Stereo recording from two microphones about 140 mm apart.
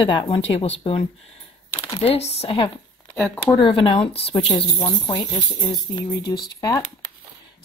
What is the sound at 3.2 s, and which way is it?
Speech, 5° left (ahead or behind).